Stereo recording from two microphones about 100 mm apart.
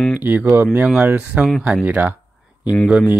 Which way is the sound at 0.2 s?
15° right (ahead or behind).